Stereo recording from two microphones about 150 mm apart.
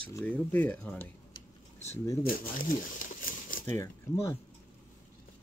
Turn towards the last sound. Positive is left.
turn(degrees=20)  # may be behind; listen again after turning